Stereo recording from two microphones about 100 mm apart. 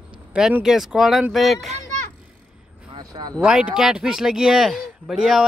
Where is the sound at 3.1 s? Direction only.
40° right (ahead or behind).